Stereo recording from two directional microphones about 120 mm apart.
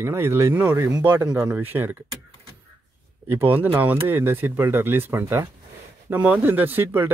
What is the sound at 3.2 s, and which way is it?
Speech, 15° right (ahead or behind).